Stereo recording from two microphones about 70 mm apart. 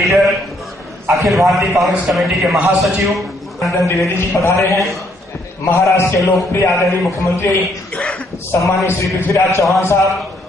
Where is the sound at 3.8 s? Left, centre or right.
Left.